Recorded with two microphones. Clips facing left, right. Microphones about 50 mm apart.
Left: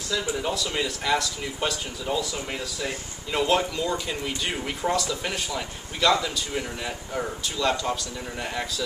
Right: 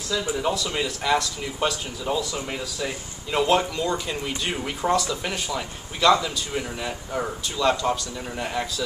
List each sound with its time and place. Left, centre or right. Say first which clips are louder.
0.1 s speech: right 2 dB; centre